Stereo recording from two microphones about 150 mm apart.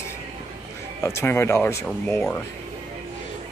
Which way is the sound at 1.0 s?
15° left (ahead or behind).